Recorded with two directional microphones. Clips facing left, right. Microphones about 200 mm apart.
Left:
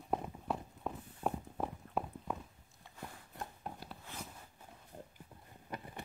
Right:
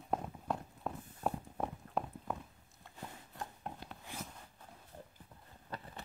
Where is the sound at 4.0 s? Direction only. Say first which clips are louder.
Right 4 dB; 10° right (ahead or behind).